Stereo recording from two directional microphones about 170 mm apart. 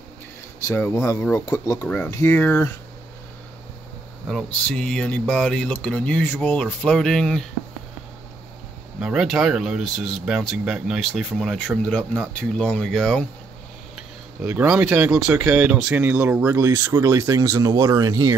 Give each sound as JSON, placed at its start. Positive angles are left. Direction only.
{"t": 0.7, "sound": "speech", "side_deg": 15}
{"t": 4.3, "sound": "speech", "side_deg": 5}
{"t": 9.0, "sound": "speech", "side_deg": -5}